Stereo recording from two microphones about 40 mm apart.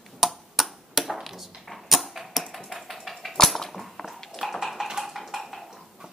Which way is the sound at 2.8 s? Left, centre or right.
Centre.